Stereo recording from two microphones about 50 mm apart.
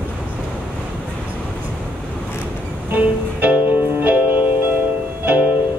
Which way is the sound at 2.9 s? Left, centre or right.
Right.